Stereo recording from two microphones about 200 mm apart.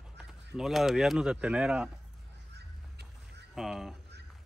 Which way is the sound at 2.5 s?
55° right (ahead or behind).